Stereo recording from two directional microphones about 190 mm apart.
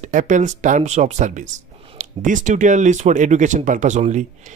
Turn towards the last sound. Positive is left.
turn(degrees=-40)  # may be behind; listen again after turning